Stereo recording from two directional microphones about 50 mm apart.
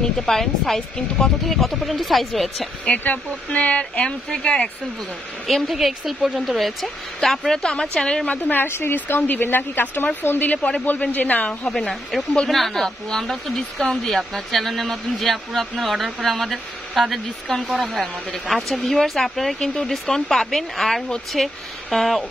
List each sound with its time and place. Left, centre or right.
0.0 s speech: centre
1.4 s a woman's voice: centre
2.9 s speech: left
5.5 s a woman's voice: centre
8.3 s speech: left
8.6 s speech: left
8.9 s speech: left
12.4 s a woman's voice: centre